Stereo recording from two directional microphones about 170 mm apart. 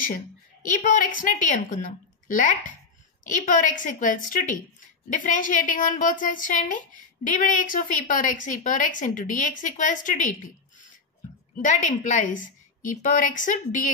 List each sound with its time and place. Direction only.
0.0 s a woman's voice: 50° left (ahead or behind)
12.2 s a woman's voice: 50° left (ahead or behind)